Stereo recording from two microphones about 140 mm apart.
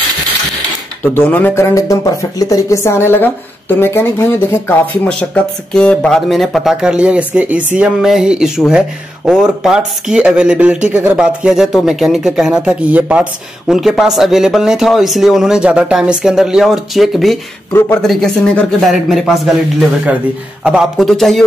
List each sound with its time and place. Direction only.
1.0 s speech: 15° left (ahead or behind)
17.7 s speech: 15° left (ahead or behind)
18.0 s speech: centre (ahead or behind)